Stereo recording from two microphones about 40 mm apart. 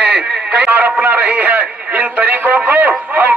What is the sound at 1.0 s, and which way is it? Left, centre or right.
A man's voice, right.